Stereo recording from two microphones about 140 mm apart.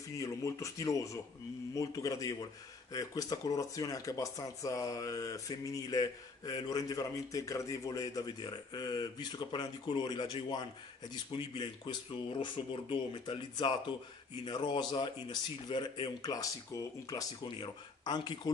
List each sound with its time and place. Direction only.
0.2 s speech: 20° left (ahead or behind)